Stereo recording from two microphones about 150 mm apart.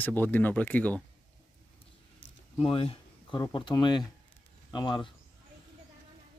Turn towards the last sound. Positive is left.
turn(degrees=30)  # may be behind; listen again after turning